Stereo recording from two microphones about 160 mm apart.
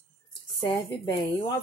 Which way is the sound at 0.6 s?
30° left (ahead or behind).